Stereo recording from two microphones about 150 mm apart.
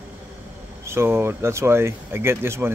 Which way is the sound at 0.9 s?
15° right (ahead or behind).